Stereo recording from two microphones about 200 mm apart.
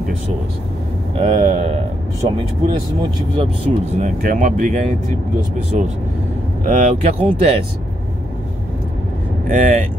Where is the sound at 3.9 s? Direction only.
40° right (ahead or behind).